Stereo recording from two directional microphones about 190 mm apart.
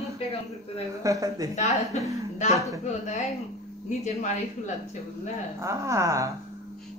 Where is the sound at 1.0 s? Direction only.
15° right (ahead or behind).